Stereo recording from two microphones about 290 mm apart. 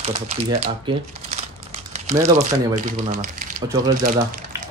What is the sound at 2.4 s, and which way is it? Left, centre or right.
Speech, right.